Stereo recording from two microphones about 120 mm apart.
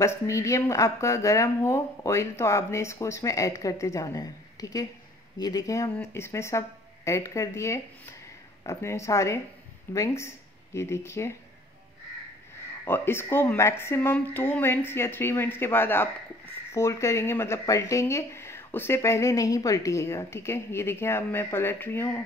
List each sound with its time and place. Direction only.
0.0 s speech: 25° left (ahead or behind)
12.8 s speech: 20° left (ahead or behind)